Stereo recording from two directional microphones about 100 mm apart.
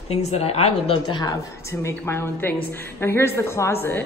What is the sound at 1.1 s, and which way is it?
Speech, 45° left (ahead or behind).